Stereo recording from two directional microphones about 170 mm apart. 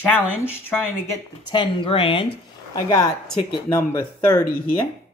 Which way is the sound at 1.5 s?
30° left (ahead or behind).